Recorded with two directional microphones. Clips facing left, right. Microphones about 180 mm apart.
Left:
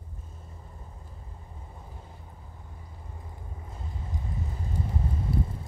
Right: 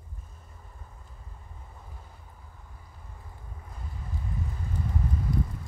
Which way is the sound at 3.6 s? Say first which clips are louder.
Left 1 dB; 25° left (ahead or behind).